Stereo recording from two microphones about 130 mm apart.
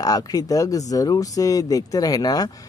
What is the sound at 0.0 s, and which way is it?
Speech, 30° left (ahead or behind).